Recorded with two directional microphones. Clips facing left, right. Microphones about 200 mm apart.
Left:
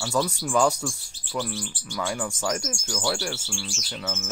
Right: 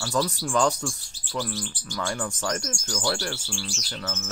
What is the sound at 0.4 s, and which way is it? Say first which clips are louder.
Speech: left 1 dB; 10° left (ahead or behind).